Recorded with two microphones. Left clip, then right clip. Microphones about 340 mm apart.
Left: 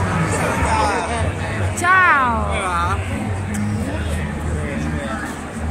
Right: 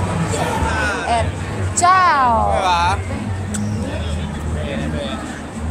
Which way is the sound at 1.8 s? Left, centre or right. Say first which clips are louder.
Right 1 dB; centre.